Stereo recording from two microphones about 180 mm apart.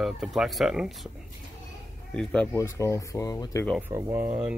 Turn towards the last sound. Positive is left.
turn(degrees=-10)  # may be behind; listen again after turning